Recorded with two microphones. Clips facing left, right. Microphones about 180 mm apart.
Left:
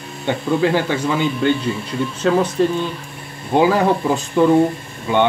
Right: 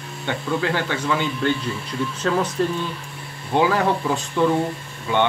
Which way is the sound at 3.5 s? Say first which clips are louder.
Left 4 dB; 10° left (ahead or behind).